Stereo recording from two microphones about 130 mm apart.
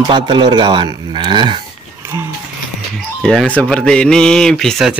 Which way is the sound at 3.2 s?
5° left (ahead or behind).